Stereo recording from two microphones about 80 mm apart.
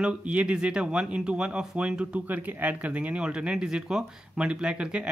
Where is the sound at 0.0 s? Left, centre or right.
Centre.